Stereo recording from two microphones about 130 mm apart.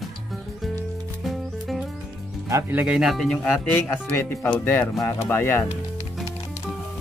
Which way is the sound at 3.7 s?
15° left (ahead or behind).